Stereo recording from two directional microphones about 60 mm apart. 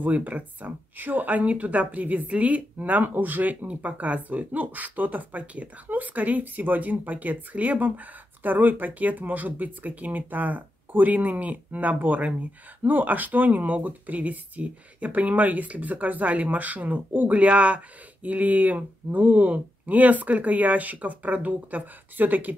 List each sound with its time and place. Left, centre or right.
0.0 s speech: right